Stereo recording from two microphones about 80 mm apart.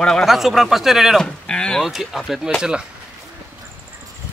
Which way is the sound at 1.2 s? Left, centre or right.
Centre.